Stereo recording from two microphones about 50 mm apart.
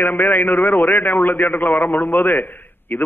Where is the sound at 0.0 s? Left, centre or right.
Left.